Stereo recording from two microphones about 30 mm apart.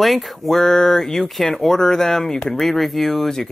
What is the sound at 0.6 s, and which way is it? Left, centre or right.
Speech, centre.